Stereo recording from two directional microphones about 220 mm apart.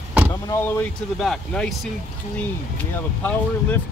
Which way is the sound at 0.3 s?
15° left (ahead or behind).